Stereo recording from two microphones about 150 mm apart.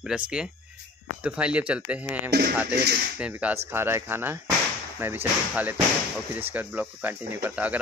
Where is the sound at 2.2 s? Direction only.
90° right.